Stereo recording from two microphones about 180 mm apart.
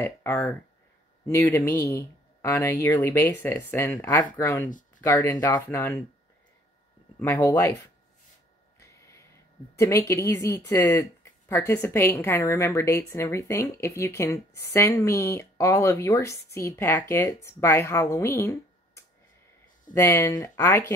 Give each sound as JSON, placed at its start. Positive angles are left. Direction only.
{"t": 0.0, "sound": "speech", "side_deg": 15}
{"t": 4.6, "sound": "a sound", "side_deg": 45}
{"t": 5.0, "sound": "speech", "side_deg": 20}
{"t": 7.2, "sound": "speech", "side_deg": 15}
{"t": 8.7, "sound": "a sound", "side_deg": 15}
{"t": 9.8, "sound": "speech", "side_deg": 15}